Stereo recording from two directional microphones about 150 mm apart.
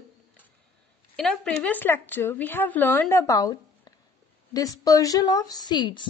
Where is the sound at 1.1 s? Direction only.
5° left (ahead or behind).